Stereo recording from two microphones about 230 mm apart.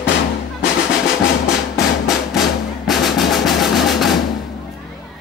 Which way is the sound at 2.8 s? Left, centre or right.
Centre.